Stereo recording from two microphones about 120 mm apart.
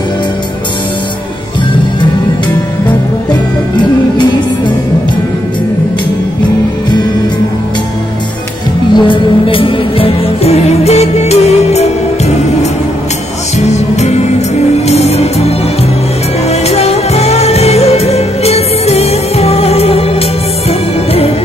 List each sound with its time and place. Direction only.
3.7 s music: 40° left (ahead or behind)
8.9 s music: 45° left (ahead or behind); by 11.9 s 65° left (ahead or behind)
13.7 s music: 70° left (ahead or behind)